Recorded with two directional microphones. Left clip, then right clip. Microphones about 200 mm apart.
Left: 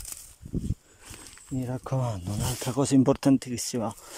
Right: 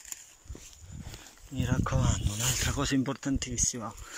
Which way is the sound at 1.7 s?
30° left (ahead or behind).